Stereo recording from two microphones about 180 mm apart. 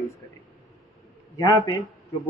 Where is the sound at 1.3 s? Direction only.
20° left (ahead or behind).